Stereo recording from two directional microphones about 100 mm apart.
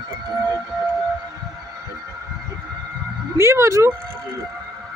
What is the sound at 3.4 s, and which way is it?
Speech, 30° right (ahead or behind).